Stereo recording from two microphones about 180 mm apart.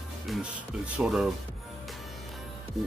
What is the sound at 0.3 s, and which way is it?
Speech, 5° right (ahead or behind).